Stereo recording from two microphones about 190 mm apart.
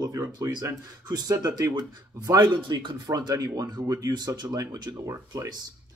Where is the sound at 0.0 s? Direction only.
20° right (ahead or behind).